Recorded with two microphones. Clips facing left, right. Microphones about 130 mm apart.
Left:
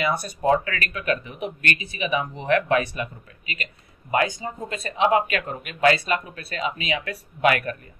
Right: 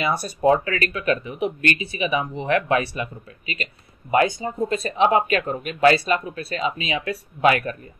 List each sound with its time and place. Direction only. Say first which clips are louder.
0.0 s speech: right 3 dB; 30° right (ahead or behind)